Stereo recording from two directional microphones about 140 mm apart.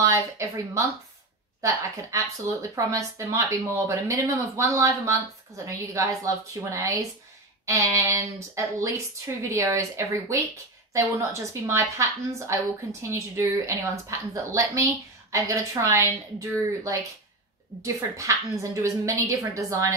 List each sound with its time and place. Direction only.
0.0 s speech: 20° right (ahead or behind)